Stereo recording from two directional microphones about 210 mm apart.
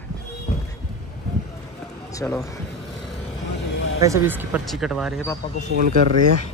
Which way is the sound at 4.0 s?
15° right (ahead or behind).